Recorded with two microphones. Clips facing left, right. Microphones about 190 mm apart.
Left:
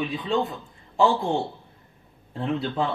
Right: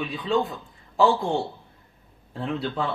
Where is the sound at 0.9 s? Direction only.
Centre (ahead or behind).